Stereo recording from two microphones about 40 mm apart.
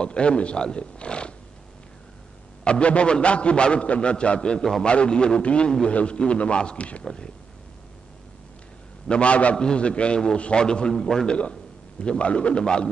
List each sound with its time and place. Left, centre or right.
0.0 s a man's voice: left
2.6 s a man's voice: left
9.0 s a man's voice: left
12.0 s a man's voice: left